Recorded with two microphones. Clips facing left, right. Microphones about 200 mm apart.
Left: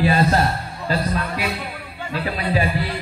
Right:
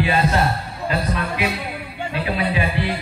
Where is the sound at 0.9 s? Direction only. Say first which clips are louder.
Left 1 dB; 35° left (ahead or behind).